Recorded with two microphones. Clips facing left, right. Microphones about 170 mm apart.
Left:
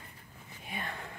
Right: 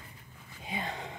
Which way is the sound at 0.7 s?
20° right (ahead or behind).